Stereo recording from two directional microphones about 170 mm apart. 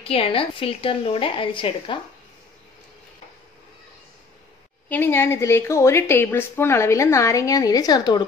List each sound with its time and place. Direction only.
0.0 s a woman's voice: 35° left (ahead or behind)
4.8 s a woman's voice: 10° left (ahead or behind)